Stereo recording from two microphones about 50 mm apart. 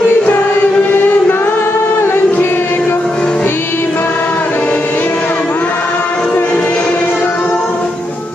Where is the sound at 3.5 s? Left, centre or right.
Left.